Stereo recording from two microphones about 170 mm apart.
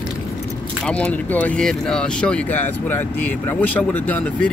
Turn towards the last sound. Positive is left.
turn(degrees=10)  # may be behind; listen again after turning